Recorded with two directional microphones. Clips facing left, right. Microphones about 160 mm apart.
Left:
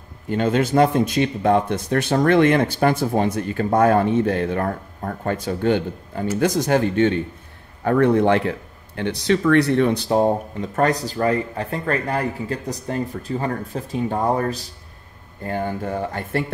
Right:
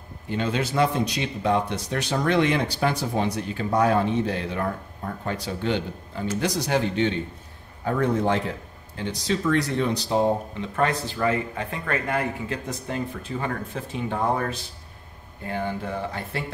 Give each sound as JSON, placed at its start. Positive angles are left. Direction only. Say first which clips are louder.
{"t": 0.3, "sound": "speech", "louder": "left 7 dB", "side_deg": 50}
{"t": 7.8, "sound": "speech", "louder": "left 7 dB", "side_deg": 60}